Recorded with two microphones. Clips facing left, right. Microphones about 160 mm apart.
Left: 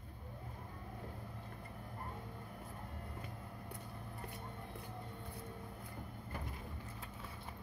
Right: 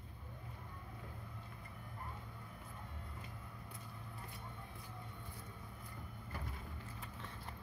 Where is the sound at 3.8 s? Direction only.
40° left (ahead or behind).